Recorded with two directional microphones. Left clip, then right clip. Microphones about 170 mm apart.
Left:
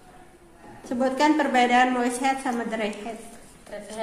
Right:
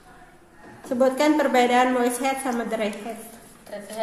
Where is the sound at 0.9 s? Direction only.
50° right (ahead or behind).